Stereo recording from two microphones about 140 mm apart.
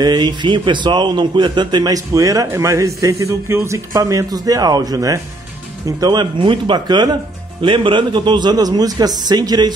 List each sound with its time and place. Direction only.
0.0 s speech: 30° right (ahead or behind)